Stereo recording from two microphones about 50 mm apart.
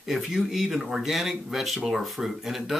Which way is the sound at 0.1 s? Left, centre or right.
Centre.